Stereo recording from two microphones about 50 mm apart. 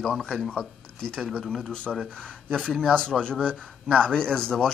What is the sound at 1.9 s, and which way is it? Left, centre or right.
Speech, centre.